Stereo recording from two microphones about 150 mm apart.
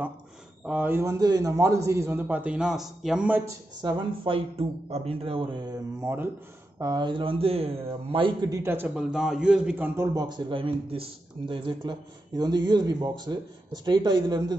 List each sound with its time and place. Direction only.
0.7 s speech: 10° right (ahead or behind)
3.8 s speech: 35° right (ahead or behind)
5.9 s speech: 15° right (ahead or behind)
6.8 s speech: 30° right (ahead or behind)
8.5 s speech: 20° right (ahead or behind)
10.1 s speech: 30° right (ahead or behind)